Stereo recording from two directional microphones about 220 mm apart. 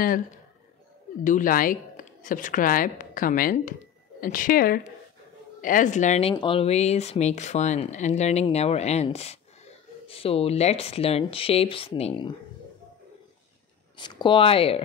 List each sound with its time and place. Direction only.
1.2 s speech: 35° left (ahead or behind)
13.9 s speech: 20° left (ahead or behind)